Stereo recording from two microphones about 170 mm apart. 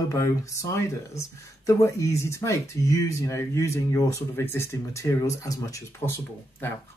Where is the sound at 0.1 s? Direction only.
20° left (ahead or behind).